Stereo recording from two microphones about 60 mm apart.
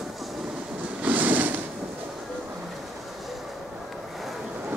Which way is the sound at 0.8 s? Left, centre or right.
Right.